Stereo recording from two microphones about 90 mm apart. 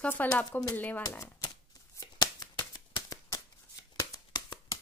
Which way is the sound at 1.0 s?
45° left (ahead or behind).